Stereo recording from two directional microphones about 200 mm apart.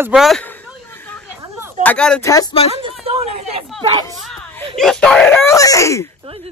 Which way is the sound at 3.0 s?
30° right (ahead or behind).